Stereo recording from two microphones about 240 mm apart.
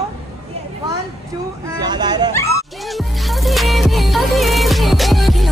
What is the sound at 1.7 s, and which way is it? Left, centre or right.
Speech, centre.